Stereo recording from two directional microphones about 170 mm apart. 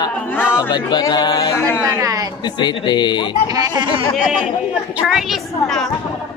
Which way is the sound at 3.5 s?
25° right (ahead or behind).